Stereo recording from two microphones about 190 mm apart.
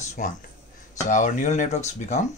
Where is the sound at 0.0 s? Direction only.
40° left (ahead or behind).